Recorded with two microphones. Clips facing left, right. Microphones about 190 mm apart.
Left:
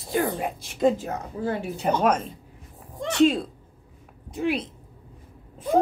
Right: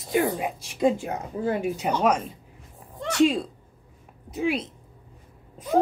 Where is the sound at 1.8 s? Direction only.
5° right (ahead or behind).